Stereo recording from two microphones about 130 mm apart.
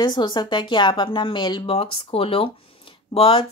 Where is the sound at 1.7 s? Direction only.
45° left (ahead or behind).